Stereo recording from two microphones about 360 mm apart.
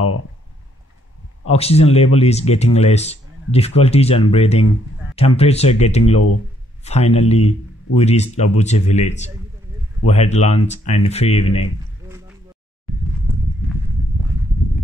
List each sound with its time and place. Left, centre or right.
1.4 s speech: centre